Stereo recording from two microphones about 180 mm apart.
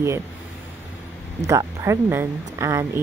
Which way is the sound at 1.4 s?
15° right (ahead or behind).